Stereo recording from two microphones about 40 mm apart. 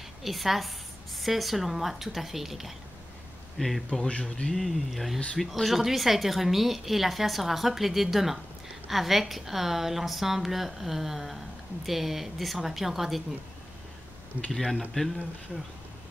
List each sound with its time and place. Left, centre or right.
0.2 s a woman's voice: centre
4.1 s speech: left
4.5 s a woman's voice: centre
14.5 s a woman's voice: centre